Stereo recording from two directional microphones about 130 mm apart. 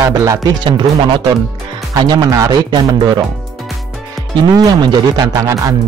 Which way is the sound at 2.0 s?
30° right (ahead or behind).